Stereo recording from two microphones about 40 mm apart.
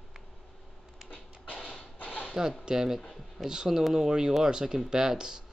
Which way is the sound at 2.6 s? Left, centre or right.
Centre.